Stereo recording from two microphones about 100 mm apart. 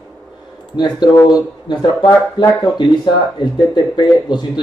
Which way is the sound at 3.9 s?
50° left (ahead or behind).